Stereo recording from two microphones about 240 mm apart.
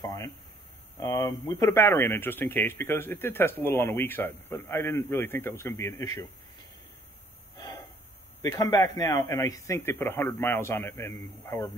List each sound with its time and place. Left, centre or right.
0.0 s speech: centre
7.5 s gasp: centre
8.4 s speech: centre